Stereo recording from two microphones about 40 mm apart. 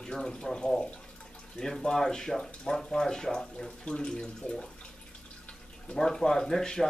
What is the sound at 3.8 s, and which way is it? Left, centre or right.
Speech, left.